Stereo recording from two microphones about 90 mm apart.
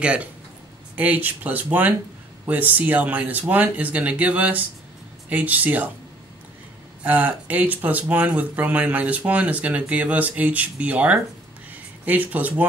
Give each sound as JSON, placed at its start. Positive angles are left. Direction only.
{"t": 0.0, "sound": "speech", "side_deg": -15}
{"t": 7.0, "sound": "speech", "side_deg": -20}